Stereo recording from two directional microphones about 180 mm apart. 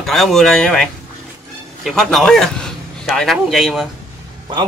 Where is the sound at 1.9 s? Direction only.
Centre (ahead or behind).